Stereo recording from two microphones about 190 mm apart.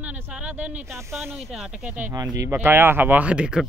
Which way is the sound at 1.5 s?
5° right (ahead or behind).